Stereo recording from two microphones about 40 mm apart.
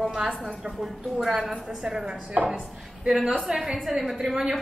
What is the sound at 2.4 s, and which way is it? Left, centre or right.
Speech, right.